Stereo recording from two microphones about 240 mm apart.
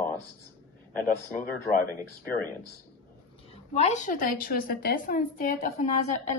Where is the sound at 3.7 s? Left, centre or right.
Left.